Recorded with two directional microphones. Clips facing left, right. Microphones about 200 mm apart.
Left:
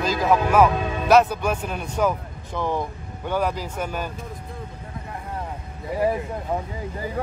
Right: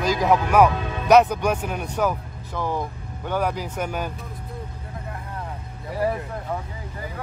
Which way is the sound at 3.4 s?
10° right (ahead or behind).